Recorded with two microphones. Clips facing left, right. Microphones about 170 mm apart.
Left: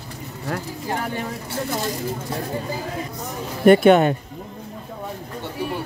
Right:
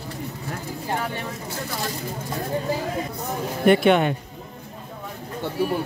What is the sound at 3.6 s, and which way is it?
Speech, 45° left (ahead or behind).